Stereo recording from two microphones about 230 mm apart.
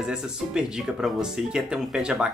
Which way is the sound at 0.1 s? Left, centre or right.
Centre.